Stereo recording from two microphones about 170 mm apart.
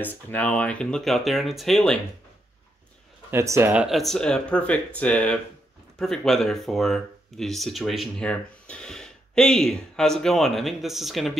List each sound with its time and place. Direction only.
0.0 s speech: 10° left (ahead or behind)
3.3 s speech: 15° right (ahead or behind)
3.8 s speech: centre (ahead or behind)